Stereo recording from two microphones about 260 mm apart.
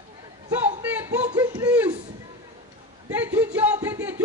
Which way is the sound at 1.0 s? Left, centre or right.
Centre.